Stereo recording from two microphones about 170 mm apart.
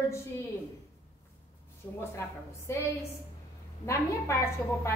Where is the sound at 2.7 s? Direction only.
15° left (ahead or behind).